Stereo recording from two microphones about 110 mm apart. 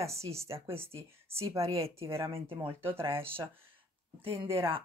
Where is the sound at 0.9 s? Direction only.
60° right (ahead or behind).